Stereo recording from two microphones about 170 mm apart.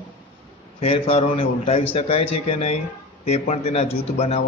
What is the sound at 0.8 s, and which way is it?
A man's voice, 35° left (ahead or behind).